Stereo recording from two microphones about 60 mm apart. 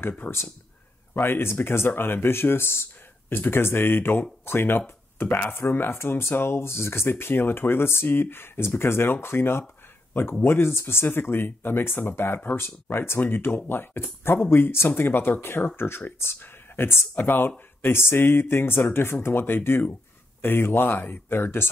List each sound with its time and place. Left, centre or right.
0.2 s speech: left